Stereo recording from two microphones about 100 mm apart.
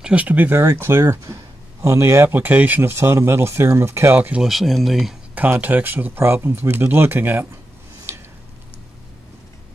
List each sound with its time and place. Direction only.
0.0 s speech: 15° right (ahead or behind)
0.6 s speech: 30° right (ahead or behind)
4.4 s speech: centre (ahead or behind)
5.3 s speech: 15° right (ahead or behind)